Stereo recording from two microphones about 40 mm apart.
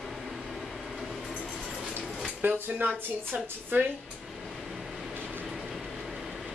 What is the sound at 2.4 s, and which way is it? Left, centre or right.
Speech, right.